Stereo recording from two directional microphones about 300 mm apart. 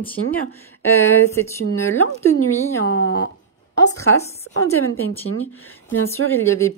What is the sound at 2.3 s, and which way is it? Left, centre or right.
Speech, left.